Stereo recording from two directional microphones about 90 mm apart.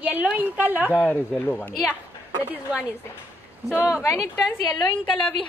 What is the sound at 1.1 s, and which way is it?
Speech, 20° left (ahead or behind).